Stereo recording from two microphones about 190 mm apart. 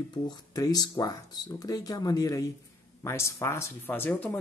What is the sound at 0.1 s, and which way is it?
Speech, 20° left (ahead or behind).